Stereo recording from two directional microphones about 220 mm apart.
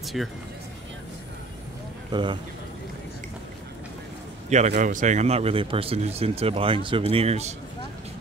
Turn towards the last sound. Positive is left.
turn(degrees=-30)  # may be behind; listen again after turning